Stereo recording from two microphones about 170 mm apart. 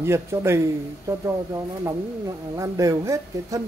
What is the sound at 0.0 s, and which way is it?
A man's voice, 15° right (ahead or behind).